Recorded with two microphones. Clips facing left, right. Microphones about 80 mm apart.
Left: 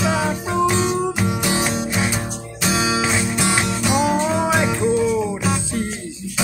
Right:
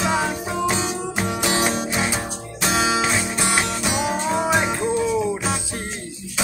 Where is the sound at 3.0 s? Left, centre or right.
Centre.